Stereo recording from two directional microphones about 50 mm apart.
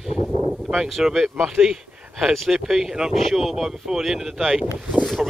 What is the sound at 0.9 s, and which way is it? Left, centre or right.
Speech, centre.